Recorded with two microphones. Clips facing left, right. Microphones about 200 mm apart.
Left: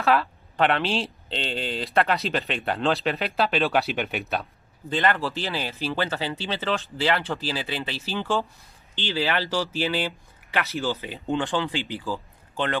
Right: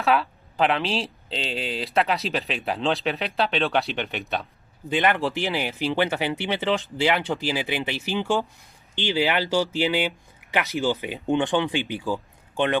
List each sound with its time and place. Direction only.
0.0 s speech: centre (ahead or behind)
4.8 s speech: 15° right (ahead or behind)